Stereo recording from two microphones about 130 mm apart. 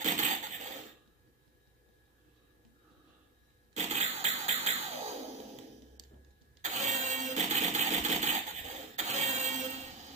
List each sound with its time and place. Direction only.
0.0 s coin: 70° right (ahead or behind)
3.7 s a sound: 60° right (ahead or behind)
6.6 s engine starting: 65° right (ahead or behind)